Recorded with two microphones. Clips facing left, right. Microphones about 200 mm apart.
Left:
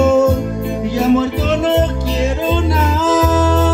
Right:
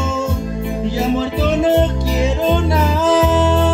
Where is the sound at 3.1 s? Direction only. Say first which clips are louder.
Left 1 dB; 20° right (ahead or behind).